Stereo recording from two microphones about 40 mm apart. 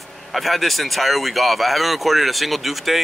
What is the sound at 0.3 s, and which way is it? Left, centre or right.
Speech, centre.